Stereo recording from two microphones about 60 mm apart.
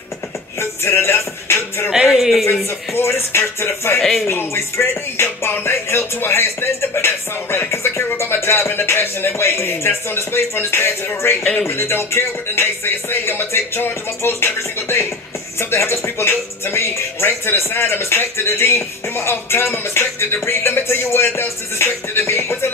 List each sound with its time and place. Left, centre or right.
0.6 s music: left
2.0 s speech: centre
2.9 s music: left
4.0 s speech: centre
4.3 s music: left